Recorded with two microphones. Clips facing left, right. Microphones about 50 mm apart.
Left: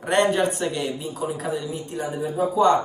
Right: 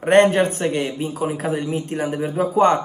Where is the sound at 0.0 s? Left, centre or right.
Right.